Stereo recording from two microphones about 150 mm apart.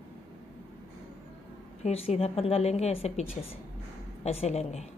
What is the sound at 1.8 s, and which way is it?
A woman's voice, 45° left (ahead or behind).